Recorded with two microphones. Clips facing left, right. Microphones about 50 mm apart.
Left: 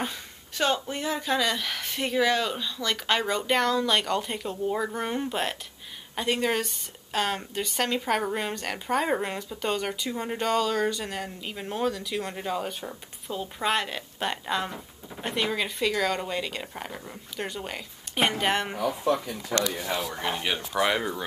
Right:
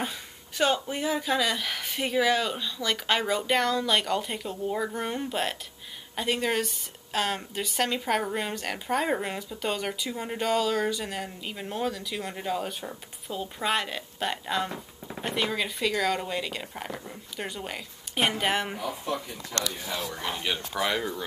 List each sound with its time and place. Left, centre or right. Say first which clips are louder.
0.8 s speech: right 1 dB; centre
20.1 s speech: left 2 dB; centre
20.7 s speech: left 4 dB; centre